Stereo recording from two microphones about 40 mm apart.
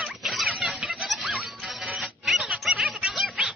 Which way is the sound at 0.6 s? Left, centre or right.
Centre.